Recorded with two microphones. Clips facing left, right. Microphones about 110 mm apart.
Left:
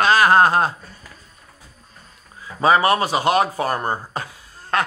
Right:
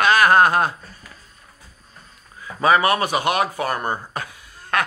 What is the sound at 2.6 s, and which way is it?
Speech, 30° left (ahead or behind).